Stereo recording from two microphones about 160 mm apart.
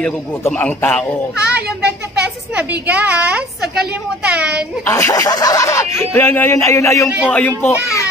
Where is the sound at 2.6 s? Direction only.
10° right (ahead or behind).